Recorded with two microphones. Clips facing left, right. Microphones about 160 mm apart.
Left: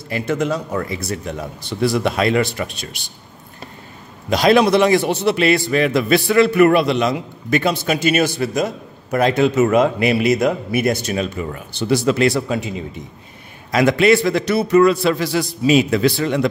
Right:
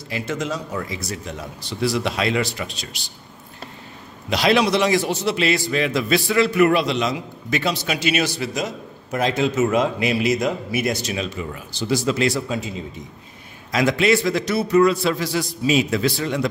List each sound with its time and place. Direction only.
0.1 s a man's voice: 60° left (ahead or behind)
4.3 s a man's voice: 45° left (ahead or behind); by 12.6 s 65° left (ahead or behind)
13.7 s a man's voice: 60° left (ahead or behind)